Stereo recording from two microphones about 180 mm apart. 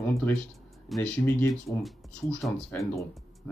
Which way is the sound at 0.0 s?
10° left (ahead or behind).